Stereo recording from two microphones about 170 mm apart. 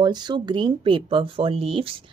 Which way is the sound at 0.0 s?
25° right (ahead or behind).